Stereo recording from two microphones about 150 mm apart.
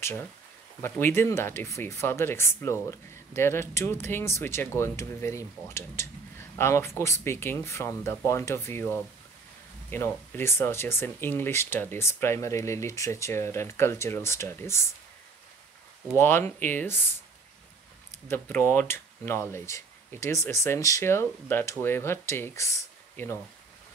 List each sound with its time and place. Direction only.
0.8 s speech: 15° left (ahead or behind)
16.2 s speech: 15° left (ahead or behind)
18.3 s speech: 15° left (ahead or behind)